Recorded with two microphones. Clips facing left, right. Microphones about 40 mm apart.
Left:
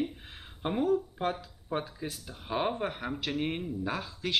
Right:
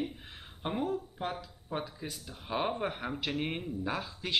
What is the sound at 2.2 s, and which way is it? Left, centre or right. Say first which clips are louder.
Speech: left 2 dB; centre.